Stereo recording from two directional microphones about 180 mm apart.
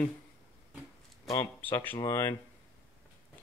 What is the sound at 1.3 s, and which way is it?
Speech, 15° left (ahead or behind).